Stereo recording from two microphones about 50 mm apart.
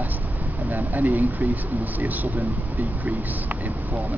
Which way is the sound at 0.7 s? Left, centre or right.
Right.